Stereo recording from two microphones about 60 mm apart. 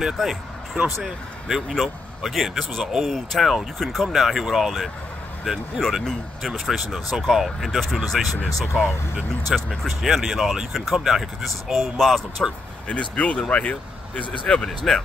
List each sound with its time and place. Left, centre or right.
0.0 s speech: centre
12.8 s speech: left